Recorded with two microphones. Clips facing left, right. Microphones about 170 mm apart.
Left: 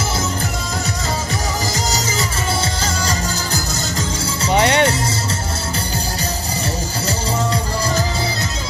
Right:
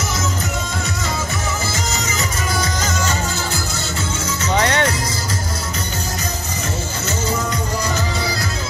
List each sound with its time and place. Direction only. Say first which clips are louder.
1.9 s music: left 2 dB; 30° left (ahead or behind)